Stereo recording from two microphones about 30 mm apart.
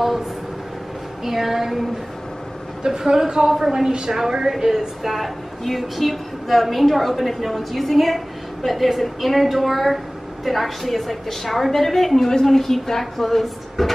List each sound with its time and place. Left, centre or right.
1.2 s a woman's voice: centre
5.1 s a woman's voice: centre